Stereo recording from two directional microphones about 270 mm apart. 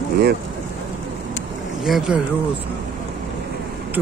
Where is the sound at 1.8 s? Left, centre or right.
Centre.